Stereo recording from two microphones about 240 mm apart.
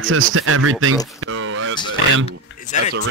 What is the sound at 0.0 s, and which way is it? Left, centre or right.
Speech, right.